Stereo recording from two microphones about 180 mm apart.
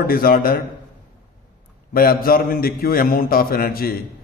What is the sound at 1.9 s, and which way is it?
A man's voice, 55° left (ahead or behind).